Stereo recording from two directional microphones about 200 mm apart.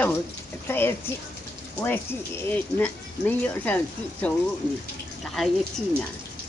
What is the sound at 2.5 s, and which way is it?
Speech, 10° left (ahead or behind).